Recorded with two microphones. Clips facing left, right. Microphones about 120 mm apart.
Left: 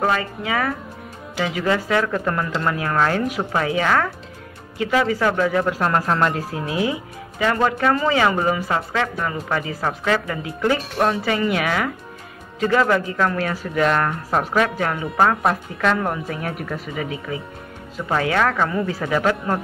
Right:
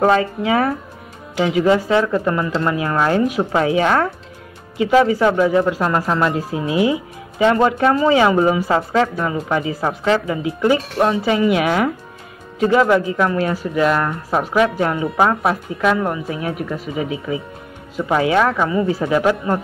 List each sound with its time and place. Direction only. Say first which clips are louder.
0.0 s speech: right 6 dB; 30° right (ahead or behind)
2.0 s speech: right 4 dB; 5° right (ahead or behind)
7.3 s speech: right 5 dB; 25° right (ahead or behind)
7.9 s speech: right 4 dB; 10° right (ahead or behind)
8.6 s speech: right 6 dB; 25° right (ahead or behind)
9.2 s speech: right 4 dB; 15° right (ahead or behind)
10.6 s speech: right 3 dB; 5° right (ahead or behind)
16.9 s speech: right 6 dB; 15° right (ahead or behind)